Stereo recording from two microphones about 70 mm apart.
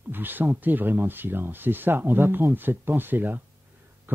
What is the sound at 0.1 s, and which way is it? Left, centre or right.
Speech, right.